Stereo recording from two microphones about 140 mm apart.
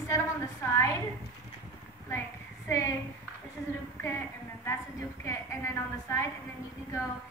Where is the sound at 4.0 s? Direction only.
20° left (ahead or behind).